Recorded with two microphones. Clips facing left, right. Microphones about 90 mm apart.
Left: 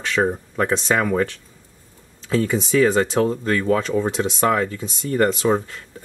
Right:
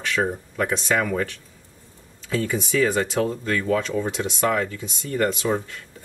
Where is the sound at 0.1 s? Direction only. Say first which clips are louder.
Left 4 dB; 35° left (ahead or behind).